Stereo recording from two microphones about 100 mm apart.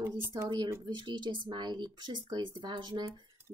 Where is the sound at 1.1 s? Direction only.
50° right (ahead or behind).